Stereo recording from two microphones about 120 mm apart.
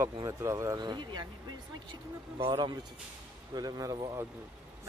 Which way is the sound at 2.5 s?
35° right (ahead or behind).